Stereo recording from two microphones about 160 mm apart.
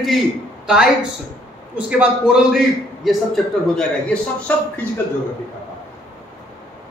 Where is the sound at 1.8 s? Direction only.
10° right (ahead or behind).